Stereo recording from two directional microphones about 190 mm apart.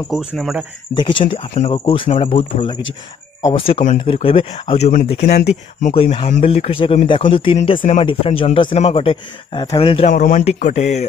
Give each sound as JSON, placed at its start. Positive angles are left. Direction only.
{"t": 0.4, "sound": "speech", "side_deg": 0}
{"t": 0.9, "sound": "speech", "side_deg": 25}
{"t": 1.2, "sound": "speech", "side_deg": 40}
{"t": 1.7, "sound": "speech", "side_deg": 25}
{"t": 7.8, "sound": "speech", "side_deg": 40}
{"t": 8.1, "sound": "speech", "side_deg": 30}
{"t": 10.1, "sound": "speech", "side_deg": 45}